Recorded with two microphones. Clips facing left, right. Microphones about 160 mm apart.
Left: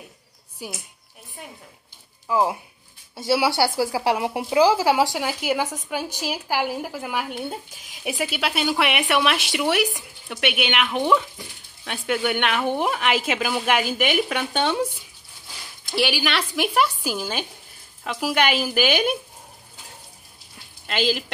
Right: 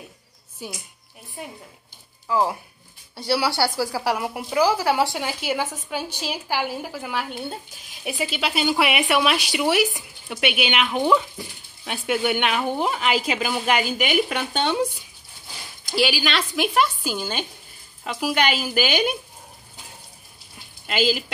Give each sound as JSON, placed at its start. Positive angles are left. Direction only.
{"t": 0.6, "sound": "a woman's voice", "side_deg": 5}
{"t": 2.2, "sound": "speech", "side_deg": 15}
{"t": 15.9, "sound": "speech", "side_deg": 0}
{"t": 20.8, "sound": "speech", "side_deg": -5}